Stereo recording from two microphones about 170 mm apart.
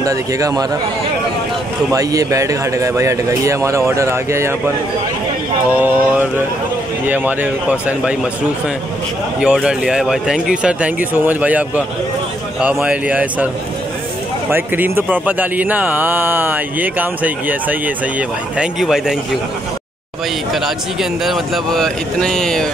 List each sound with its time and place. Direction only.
0.0 s speech: 20° right (ahead or behind)
1.9 s speech: 20° right (ahead or behind)
5.7 s speech: 10° right (ahead or behind)
9.4 s speech: 5° right (ahead or behind)
14.5 s speech: 10° right (ahead or behind)
20.6 s speech: centre (ahead or behind)